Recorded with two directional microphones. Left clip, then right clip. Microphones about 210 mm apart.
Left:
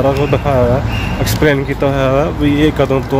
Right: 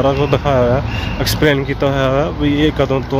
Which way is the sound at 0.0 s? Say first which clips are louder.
Left 1 dB; 15° right (ahead or behind).